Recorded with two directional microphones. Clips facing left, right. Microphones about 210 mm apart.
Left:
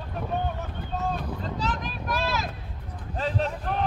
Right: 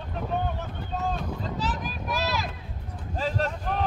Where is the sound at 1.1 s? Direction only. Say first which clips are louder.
Even; centre (ahead or behind).